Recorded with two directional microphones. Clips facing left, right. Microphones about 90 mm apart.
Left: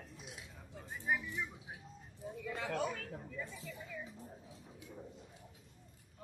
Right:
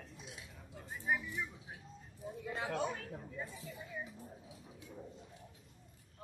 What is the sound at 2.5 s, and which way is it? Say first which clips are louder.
Speech: even; 25° right (ahead or behind).